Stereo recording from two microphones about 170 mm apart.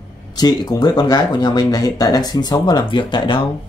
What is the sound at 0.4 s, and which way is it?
Speech, 25° left (ahead or behind).